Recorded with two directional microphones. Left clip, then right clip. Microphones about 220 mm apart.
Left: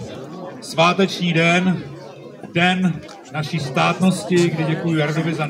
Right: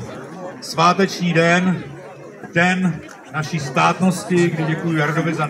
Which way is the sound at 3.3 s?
15° left (ahead or behind).